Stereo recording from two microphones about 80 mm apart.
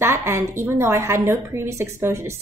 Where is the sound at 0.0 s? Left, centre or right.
Right.